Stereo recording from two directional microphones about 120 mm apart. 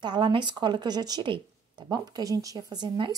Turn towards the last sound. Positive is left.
turn(degrees=-35)  # may be behind; listen again after turning